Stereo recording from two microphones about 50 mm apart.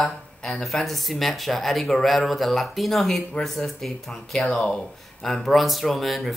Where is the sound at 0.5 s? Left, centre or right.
Centre.